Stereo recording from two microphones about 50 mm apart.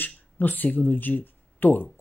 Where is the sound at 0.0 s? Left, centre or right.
Left.